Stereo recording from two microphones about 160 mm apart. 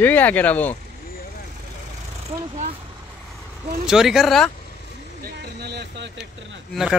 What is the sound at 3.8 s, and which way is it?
Speech, centre (ahead or behind).